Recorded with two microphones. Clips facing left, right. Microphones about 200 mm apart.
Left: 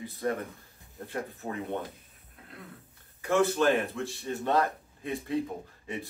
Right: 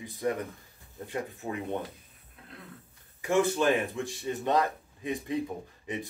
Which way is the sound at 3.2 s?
15° right (ahead or behind).